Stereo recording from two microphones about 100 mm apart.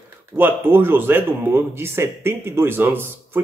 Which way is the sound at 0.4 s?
20° right (ahead or behind).